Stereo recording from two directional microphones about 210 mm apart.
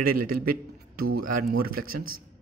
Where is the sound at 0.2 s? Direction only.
45° right (ahead or behind).